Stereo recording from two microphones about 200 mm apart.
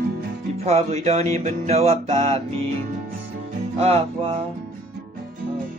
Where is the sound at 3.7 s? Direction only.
30° right (ahead or behind).